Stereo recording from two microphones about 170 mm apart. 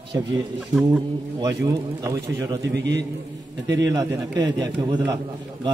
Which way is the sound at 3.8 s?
20° right (ahead or behind).